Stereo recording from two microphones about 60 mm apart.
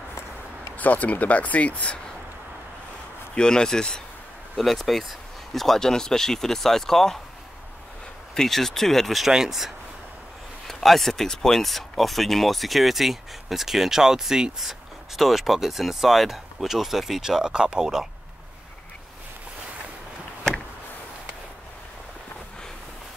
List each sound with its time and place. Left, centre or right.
0.7 s speech: left
3.3 s speech: centre
8.4 s speech: centre